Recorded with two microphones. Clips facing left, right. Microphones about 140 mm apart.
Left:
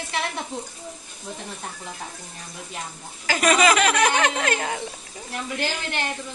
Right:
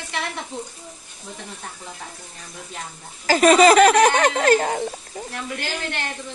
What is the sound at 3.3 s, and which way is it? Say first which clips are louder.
Speech: right 6 dB; 35° right (ahead or behind).